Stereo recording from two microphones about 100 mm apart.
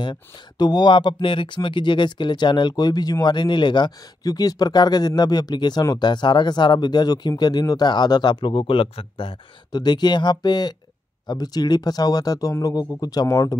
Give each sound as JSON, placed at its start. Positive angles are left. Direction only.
{"t": 0.0, "sound": "speech", "side_deg": 45}
{"t": 9.7, "sound": "speech", "side_deg": 45}